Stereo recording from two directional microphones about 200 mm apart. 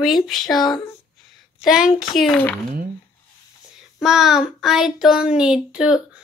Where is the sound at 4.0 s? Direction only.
Centre (ahead or behind).